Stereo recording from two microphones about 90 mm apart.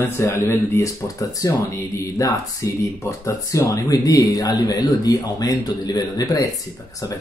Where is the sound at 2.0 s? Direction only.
35° left (ahead or behind).